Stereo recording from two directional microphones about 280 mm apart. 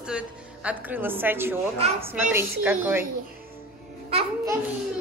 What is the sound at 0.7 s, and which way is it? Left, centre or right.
Speech, centre.